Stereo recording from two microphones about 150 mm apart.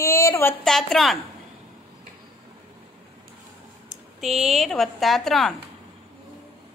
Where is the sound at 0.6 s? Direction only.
Centre (ahead or behind).